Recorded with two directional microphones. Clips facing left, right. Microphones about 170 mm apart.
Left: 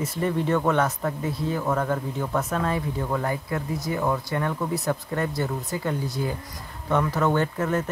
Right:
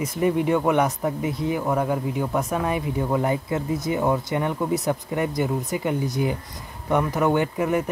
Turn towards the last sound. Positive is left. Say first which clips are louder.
# right 2 dB
turn(degrees=-15)  # may be behind; listen again after turning